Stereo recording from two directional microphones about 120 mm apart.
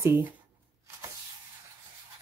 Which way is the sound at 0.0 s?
20° right (ahead or behind).